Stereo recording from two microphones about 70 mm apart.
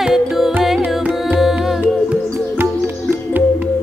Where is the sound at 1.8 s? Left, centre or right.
Right.